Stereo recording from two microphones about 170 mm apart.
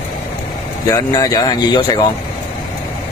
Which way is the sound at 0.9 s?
20° left (ahead or behind).